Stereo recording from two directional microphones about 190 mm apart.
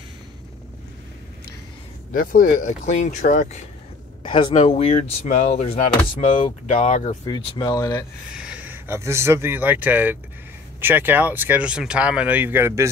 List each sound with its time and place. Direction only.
2.1 s speech: 45° left (ahead or behind)
4.2 s speech: 25° left (ahead or behind)
7.1 s speech: 25° left (ahead or behind)
8.3 s speech: 5° right (ahead or behind)